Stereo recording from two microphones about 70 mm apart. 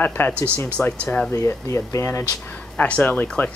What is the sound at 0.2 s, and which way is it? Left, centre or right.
Speech, left.